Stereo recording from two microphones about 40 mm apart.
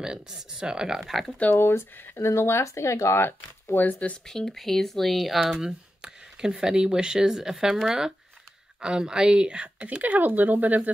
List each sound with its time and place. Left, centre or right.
0.0 s speech: centre
0.9 s speech: centre
1.5 s speech: left
4.3 s speech: centre
5.6 s a woman's voice: centre
10.0 s speech: right